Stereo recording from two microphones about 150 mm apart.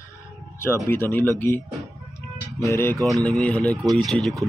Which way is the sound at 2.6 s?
15° left (ahead or behind).